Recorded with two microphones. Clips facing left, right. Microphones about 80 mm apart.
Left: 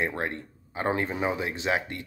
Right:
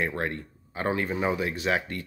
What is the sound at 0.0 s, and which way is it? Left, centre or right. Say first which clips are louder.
Speech: even; left.